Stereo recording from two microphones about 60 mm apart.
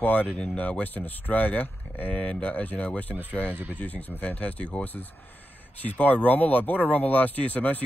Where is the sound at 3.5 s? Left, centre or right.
Right.